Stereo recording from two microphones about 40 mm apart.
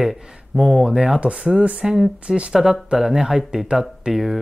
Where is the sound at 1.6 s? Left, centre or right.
Right.